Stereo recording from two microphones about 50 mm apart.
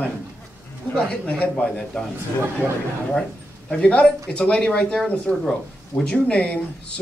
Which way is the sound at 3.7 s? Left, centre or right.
Centre.